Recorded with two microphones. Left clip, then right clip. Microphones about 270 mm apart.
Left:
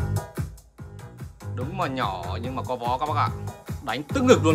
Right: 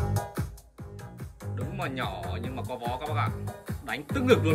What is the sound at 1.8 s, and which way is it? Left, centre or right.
Music, centre.